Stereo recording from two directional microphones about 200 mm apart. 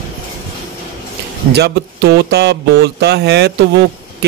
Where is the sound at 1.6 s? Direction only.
55° right (ahead or behind).